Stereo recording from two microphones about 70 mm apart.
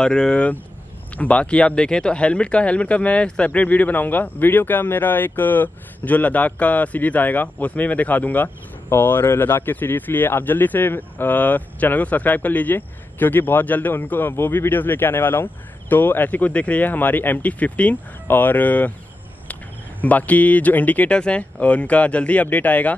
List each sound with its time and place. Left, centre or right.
0.0 s speech: centre
20.0 s speech: left